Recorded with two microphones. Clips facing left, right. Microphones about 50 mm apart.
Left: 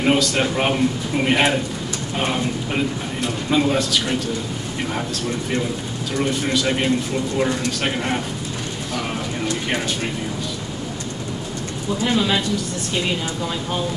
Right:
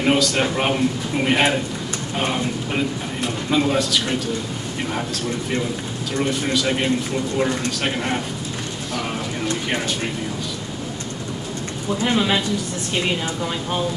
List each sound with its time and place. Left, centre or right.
0.0 s speech: centre
6.2 s speech: centre
12.0 s speech: centre